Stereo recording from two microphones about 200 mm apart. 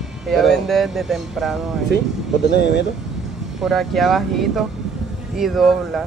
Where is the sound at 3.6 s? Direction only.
Centre (ahead or behind).